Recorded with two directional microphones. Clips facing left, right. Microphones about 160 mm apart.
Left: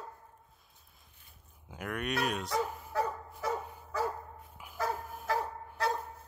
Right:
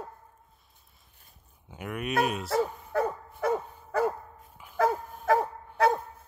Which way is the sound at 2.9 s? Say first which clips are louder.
Right 5 dB; 55° right (ahead or behind).